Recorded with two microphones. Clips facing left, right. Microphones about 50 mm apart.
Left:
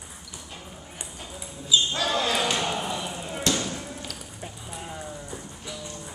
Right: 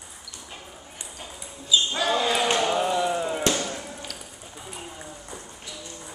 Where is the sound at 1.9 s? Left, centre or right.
Centre.